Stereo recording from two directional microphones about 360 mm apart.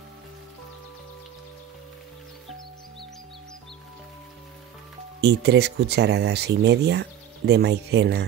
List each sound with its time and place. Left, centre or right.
5.2 s speech: right